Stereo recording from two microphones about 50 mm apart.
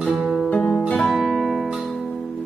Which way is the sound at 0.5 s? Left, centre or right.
Left.